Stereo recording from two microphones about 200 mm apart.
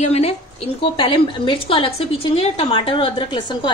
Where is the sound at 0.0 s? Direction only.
30° left (ahead or behind).